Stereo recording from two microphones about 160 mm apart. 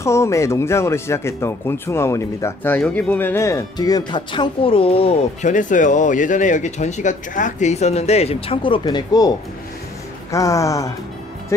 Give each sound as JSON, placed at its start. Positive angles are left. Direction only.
{"t": 0.0, "sound": "speech", "side_deg": 20}
{"t": 5.5, "sound": "speech", "side_deg": 55}
{"t": 10.3, "sound": "speech", "side_deg": 20}